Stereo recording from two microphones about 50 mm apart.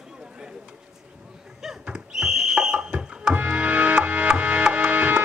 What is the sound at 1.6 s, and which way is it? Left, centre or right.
Music, centre.